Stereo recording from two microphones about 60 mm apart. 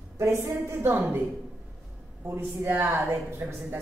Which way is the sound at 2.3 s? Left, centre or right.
Right.